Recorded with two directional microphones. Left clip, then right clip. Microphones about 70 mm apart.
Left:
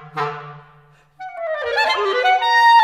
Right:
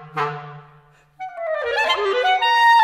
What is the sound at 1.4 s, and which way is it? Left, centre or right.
Clarinet, left.